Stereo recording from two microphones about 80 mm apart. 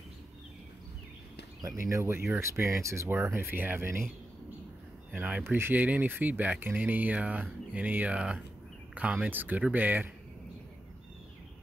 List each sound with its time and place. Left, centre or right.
1.6 s speech: right
3.3 s speech: right
5.1 s speech: centre